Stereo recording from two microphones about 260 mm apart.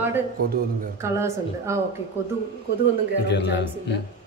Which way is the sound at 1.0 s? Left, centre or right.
Centre.